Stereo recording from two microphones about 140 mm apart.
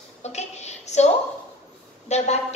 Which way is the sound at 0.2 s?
50° left (ahead or behind).